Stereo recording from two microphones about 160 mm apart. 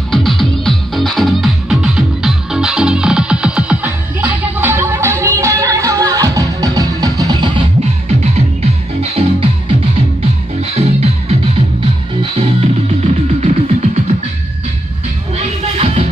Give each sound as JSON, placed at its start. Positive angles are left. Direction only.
{"t": 0.1, "sound": "music", "side_deg": 0}
{"t": 9.0, "sound": "music", "side_deg": -40}
{"t": 10.7, "sound": "music", "side_deg": -40}
{"t": 15.3, "sound": "music", "side_deg": -40}